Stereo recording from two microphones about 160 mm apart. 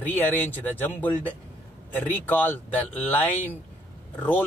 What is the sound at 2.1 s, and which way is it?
A man's voice, 10° left (ahead or behind).